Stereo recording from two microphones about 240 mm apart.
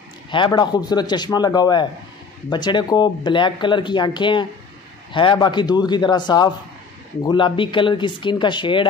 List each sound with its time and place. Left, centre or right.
0.3 s speech: centre